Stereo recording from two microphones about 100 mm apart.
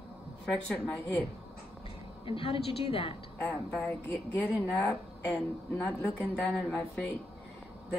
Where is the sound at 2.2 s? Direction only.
65° left (ahead or behind).